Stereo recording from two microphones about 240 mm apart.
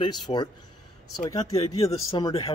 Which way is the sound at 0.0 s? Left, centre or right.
Centre.